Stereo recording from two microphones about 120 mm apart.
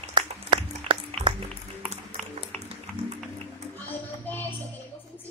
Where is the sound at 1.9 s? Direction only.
65° right (ahead or behind).